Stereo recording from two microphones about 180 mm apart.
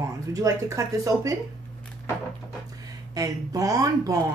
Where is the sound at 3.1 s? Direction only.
20° right (ahead or behind).